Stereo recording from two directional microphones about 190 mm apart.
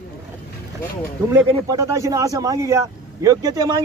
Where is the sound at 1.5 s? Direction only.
20° right (ahead or behind).